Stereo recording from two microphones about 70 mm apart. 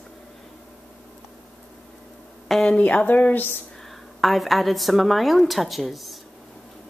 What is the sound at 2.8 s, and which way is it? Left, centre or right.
Speech, left.